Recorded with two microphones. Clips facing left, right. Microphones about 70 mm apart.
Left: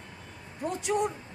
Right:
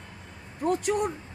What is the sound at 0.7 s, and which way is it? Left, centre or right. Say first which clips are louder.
Speech: right 4 dB; right.